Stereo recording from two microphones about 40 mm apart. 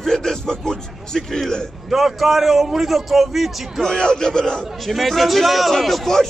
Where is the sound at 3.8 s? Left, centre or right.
Centre.